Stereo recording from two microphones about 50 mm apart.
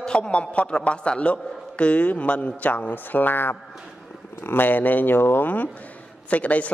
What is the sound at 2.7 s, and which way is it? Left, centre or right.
Speech, left.